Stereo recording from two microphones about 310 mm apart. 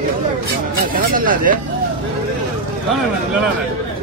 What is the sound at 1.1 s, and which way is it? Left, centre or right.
Speech, right.